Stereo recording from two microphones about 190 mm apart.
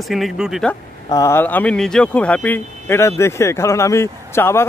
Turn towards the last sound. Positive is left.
turn(degrees=15)  # may be behind; listen again after turning